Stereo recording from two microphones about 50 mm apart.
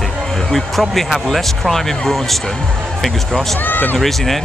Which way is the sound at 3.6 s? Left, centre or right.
Left.